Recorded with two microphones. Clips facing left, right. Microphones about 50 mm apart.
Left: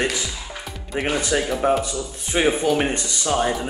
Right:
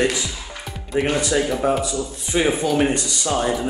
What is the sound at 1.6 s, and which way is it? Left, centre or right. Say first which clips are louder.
Speech: even; left.